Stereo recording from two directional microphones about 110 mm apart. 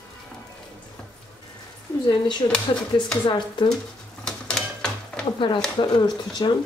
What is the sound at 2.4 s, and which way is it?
Speech, 50° left (ahead or behind).